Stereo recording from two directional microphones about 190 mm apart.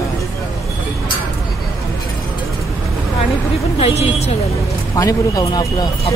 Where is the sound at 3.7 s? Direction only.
35° left (ahead or behind).